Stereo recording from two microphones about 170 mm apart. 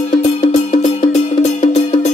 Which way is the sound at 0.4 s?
35° left (ahead or behind).